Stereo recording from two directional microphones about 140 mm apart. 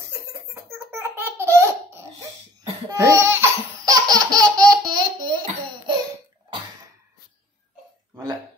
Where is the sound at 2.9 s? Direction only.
20° right (ahead or behind).